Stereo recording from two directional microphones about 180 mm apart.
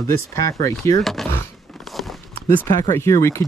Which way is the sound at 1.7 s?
Centre (ahead or behind).